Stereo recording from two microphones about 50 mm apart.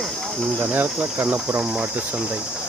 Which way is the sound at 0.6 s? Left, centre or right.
Right.